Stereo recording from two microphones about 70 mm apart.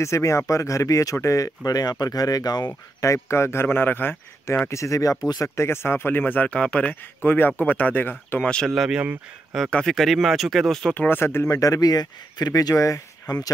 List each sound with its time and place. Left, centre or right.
0.0 s speech: left
3.0 s speech: left
4.6 s speech: left
5.6 s speech: left; by 6.9 s centre
7.2 s speech: left
8.4 s speech: centre
8.7 s speech: centre
11.0 s speech: left
11.4 s speech: left
12.7 s speech: left